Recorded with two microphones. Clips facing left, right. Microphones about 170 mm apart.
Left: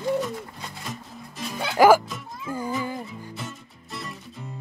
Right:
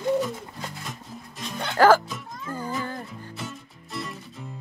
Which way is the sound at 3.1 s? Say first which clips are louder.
Even; centre (ahead or behind).